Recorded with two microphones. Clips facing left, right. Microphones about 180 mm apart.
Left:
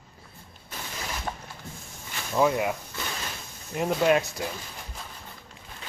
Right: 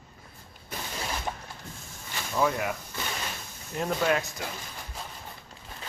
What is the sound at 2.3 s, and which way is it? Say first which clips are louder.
Speech: left 4 dB; 20° left (ahead or behind).